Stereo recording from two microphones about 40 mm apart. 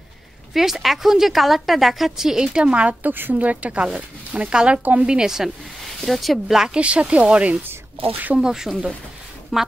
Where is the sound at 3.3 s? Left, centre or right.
Right.